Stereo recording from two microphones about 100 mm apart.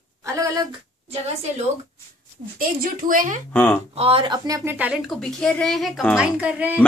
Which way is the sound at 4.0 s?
75° right (ahead or behind).